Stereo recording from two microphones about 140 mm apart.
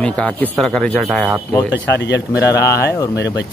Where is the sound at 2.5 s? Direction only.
20° left (ahead or behind).